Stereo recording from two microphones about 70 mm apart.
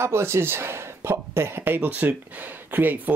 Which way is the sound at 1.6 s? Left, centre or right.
Right.